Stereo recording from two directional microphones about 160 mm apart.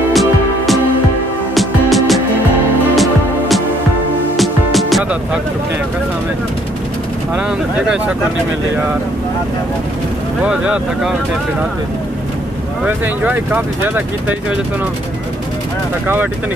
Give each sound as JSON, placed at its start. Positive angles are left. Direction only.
{"t": 0.1, "sound": "music", "side_deg": 0}
{"t": 10.4, "sound": "speech", "side_deg": -5}
{"t": 12.8, "sound": "speech", "side_deg": -10}